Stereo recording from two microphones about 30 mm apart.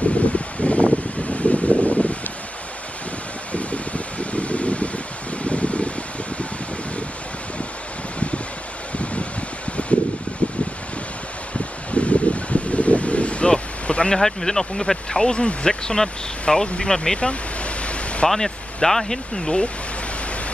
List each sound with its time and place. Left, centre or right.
0.3 s a sound: left
1.3 s wind: left
3.5 s a sound: left
8.9 s a sound: left
11.9 s a sound: left
14.1 s speech: centre
15.3 s speech: left
15.7 s speech: centre
16.6 s speech: left
16.9 s speech: centre
17.2 s speech: left
18.3 s speech: centre